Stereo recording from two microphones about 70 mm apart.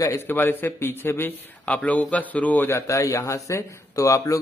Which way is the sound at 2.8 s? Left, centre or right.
Left.